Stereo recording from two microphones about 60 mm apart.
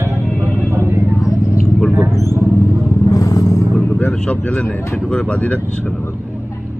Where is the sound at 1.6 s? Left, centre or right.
Left.